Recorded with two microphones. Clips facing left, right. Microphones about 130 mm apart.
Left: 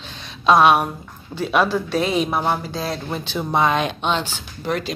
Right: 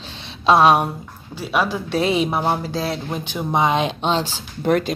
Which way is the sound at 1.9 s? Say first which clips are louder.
Right 1 dB; 25° right (ahead or behind).